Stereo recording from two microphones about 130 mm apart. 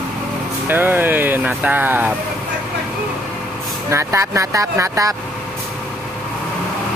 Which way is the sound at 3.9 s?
20° right (ahead or behind).